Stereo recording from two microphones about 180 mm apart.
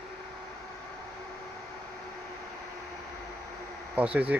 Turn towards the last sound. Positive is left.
turn(degrees=-10)  # may be behind; listen again after turning